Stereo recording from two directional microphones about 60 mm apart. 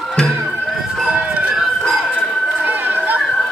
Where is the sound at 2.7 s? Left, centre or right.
Right.